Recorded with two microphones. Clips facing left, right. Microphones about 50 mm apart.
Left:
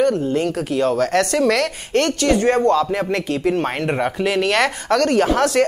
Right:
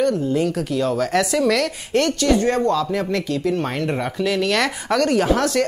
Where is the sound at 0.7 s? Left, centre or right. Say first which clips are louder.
Left 3 dB; centre.